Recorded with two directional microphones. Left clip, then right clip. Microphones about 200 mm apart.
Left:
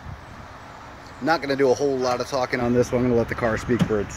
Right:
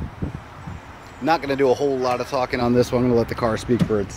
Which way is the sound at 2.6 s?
20° right (ahead or behind).